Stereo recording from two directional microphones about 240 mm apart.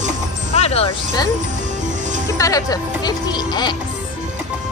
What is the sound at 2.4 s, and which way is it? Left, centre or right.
Speech, centre.